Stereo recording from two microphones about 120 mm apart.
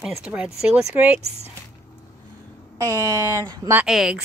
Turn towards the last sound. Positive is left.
turn(degrees=-5)  # may be behind; listen again after turning